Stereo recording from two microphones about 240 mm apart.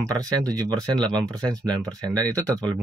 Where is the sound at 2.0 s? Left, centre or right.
Centre.